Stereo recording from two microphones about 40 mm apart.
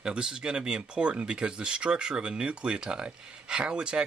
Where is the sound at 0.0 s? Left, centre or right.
Centre.